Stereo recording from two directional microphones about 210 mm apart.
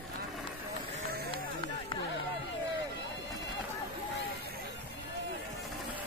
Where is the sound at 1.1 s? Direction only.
50° right (ahead or behind).